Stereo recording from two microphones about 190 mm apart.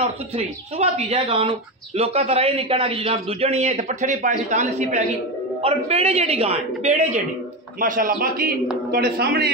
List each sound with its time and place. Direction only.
0.4 s a man's voice: 35° right (ahead or behind); by 9.5 s 55° right (ahead or behind)